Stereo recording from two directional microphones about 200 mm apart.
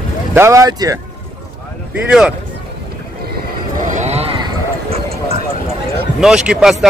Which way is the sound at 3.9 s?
35° right (ahead or behind).